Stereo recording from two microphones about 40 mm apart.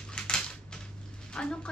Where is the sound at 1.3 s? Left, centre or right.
Left.